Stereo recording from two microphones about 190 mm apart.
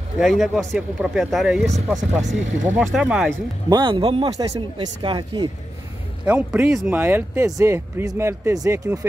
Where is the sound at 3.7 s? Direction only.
25° right (ahead or behind).